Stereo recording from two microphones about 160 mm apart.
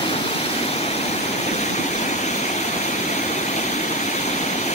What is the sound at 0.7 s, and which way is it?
Vehicle, 40° left (ahead or behind).